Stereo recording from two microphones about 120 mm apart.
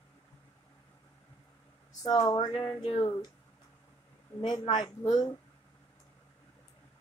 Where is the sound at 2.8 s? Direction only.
55° left (ahead or behind).